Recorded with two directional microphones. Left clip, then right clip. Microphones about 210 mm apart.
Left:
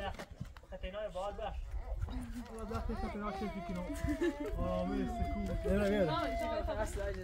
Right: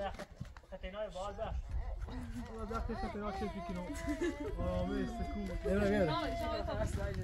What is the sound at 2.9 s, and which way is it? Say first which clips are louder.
Speech: even; 15° right (ahead or behind).